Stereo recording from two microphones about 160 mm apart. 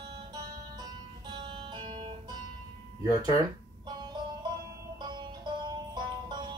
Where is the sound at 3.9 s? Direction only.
25° right (ahead or behind).